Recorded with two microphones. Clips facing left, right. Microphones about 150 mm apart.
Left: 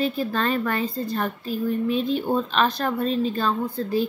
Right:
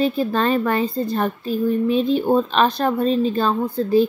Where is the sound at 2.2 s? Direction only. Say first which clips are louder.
Right 5 dB; 40° right (ahead or behind).